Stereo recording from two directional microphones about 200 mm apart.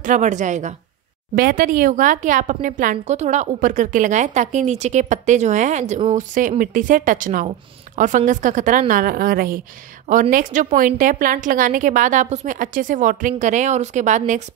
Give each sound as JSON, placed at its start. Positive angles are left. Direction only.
{"t": 0.0, "sound": "speech", "side_deg": -40}